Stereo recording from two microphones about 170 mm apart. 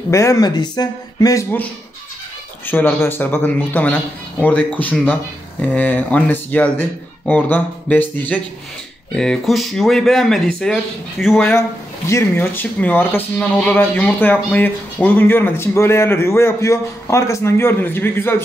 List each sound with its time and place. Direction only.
0.1 s speech: 20° left (ahead or behind); by 11.4 s centre (ahead or behind)
12.1 s speech: 15° left (ahead or behind)